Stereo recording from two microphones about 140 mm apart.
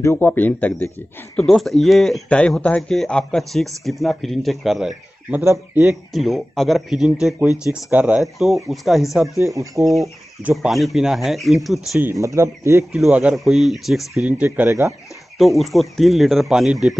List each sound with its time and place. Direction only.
0.0 s a man's voice: 15° left (ahead or behind); by 5.4 s 5° right (ahead or behind)
5.4 s speech: 20° right (ahead or behind)
5.9 s a man's voice: centre (ahead or behind)
9.8 s speech: 20° right (ahead or behind)
10.5 s a man's voice: centre (ahead or behind)
12.0 s speech: 20° right (ahead or behind)
12.9 s a man's voice: 5° right (ahead or behind)
14.4 s speech: 15° right (ahead or behind)
15.3 s a man's voice: centre (ahead or behind)